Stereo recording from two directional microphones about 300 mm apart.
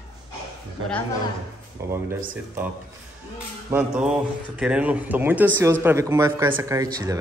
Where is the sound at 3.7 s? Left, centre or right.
Centre.